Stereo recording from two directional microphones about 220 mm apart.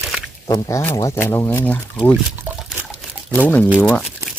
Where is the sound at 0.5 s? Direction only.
15° left (ahead or behind).